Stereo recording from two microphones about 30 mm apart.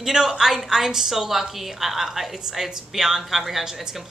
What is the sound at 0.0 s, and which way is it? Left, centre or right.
A woman's voice, centre.